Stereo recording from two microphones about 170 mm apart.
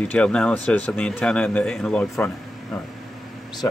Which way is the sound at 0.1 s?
5° left (ahead or behind).